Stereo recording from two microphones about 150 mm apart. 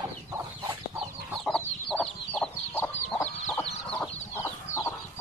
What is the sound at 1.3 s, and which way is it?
Chicken, 5° left (ahead or behind).